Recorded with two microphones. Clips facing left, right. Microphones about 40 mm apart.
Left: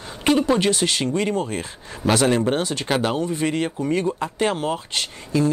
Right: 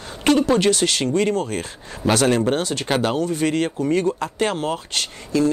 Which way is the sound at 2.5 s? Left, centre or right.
Left.